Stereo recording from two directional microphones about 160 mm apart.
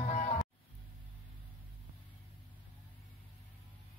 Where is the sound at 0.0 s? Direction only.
40° left (ahead or behind).